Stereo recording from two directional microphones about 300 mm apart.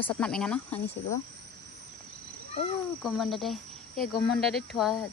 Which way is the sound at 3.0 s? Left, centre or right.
Centre.